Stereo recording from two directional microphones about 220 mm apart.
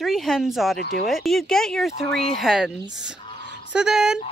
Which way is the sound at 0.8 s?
45° left (ahead or behind).